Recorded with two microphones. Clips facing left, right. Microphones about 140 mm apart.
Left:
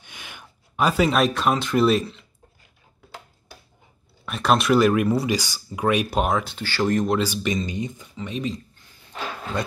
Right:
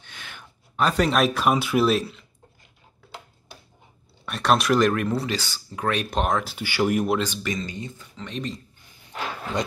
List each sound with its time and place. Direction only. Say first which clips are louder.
0.0 s speech: left 1 dB; 15° left (ahead or behind); by 2.2 s centre (ahead or behind)
4.3 s speech: left 1 dB; centre (ahead or behind)
6.5 s speech: even; 10° right (ahead or behind)
7.4 s speech: left 4 dB; 20° left (ahead or behind)
8.3 s speech: left 3 dB; 5° left (ahead or behind)